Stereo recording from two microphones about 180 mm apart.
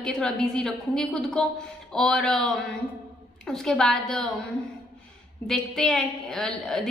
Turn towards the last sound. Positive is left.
turn(degrees=0)  # may be behind; listen again after turning